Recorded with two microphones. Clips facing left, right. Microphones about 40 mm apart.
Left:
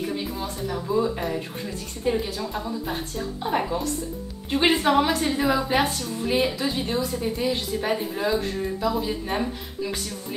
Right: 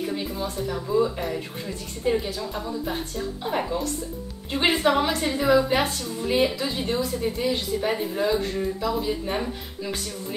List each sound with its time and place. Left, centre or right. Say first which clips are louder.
0.1 s a woman's voice: right 1 dB; centre